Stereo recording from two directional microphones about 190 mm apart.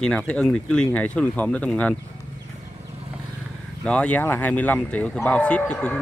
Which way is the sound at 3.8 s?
5° left (ahead or behind).